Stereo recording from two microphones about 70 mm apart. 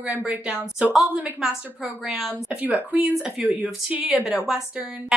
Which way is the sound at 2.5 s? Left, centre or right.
Right.